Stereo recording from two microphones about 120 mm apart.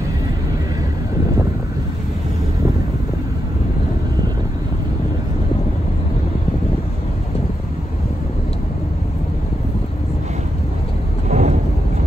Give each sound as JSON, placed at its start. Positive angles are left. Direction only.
{"t": 11.2, "sound": "vehicle", "side_deg": -70}